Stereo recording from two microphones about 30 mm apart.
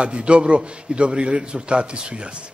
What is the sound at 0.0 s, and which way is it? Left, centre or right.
A man's voice, right.